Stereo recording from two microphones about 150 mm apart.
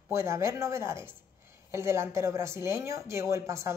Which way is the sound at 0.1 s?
20° right (ahead or behind).